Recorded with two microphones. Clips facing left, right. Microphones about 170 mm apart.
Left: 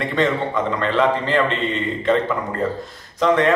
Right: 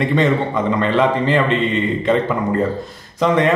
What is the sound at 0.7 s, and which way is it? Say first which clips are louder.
Speech: right 3 dB; 15° right (ahead or behind).